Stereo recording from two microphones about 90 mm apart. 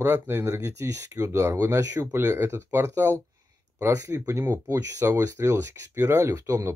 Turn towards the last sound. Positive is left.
turn(degrees=-35)  # may be behind; listen again after turning